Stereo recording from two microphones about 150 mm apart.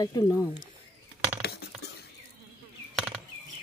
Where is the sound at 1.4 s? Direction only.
90° left.